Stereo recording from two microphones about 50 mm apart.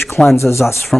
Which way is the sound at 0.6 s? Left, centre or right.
Centre.